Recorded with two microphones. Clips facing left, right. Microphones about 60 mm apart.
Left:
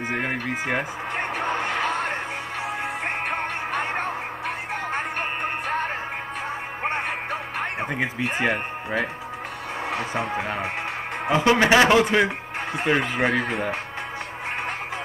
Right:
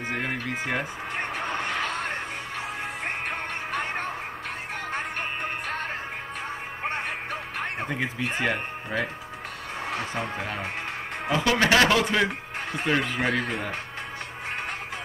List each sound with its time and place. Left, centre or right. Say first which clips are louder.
0.1 s music: left 3 dB; centre
8.2 s a man's voice: left 3 dB; centre